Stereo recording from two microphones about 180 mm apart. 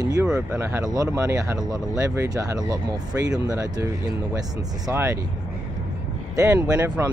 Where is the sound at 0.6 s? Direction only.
15° right (ahead or behind).